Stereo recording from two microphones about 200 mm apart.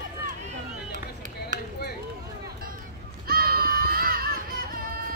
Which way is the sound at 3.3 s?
50° right (ahead or behind).